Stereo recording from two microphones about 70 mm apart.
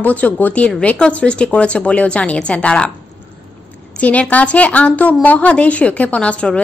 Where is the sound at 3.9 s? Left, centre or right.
Centre.